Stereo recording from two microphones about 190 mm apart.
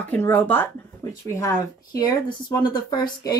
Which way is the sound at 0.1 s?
10° left (ahead or behind).